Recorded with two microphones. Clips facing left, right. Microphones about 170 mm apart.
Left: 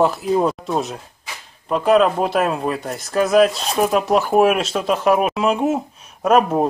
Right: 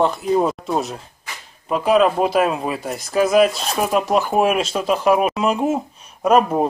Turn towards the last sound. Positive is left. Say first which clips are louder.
# even
turn(degrees=0)  # may be behind; listen again after turning